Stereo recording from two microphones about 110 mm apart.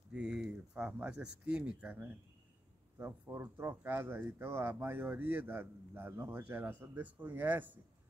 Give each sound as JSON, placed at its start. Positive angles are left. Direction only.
{"t": 0.1, "sound": "speech", "side_deg": -10}